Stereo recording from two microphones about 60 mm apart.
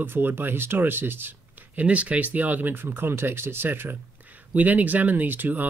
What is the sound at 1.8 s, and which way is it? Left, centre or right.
Speech, right.